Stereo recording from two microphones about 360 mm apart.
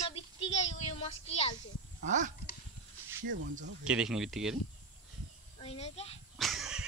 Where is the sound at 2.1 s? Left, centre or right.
Right.